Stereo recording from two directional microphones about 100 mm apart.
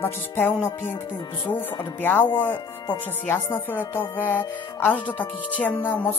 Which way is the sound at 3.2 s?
20° left (ahead or behind).